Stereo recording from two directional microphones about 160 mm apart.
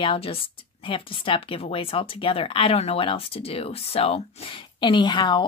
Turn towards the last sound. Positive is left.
turn(degrees=30)  # may be behind; listen again after turning